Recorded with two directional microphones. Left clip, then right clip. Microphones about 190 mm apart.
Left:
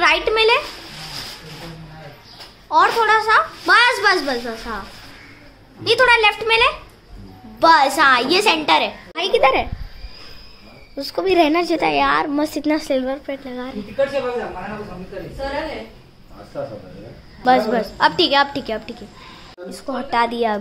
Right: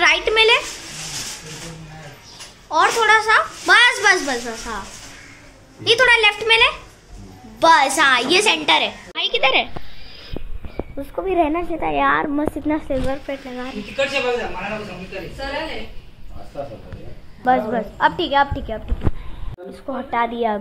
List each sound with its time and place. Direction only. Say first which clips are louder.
0.0 s a sound: right 1 dB; centre (ahead or behind)
2.7 s a woman's voice: even; centre (ahead or behind)
5.9 s a woman's voice: even; centre (ahead or behind)
11.1 s a woman's voice: left 3 dB; 25° left (ahead or behind)
11.9 s speech: right 2 dB; 5° left (ahead or behind)
12.4 s speech: left 2 dB; 25° left (ahead or behind)
13.9 s a woman's voice: even; centre (ahead or behind)
17.6 s a woman's voice: left 2 dB; 20° left (ahead or behind)
19.9 s speech: left 2 dB; 20° left (ahead or behind)